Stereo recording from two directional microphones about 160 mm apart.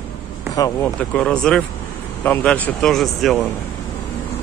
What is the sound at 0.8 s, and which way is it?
Speech, 5° left (ahead or behind).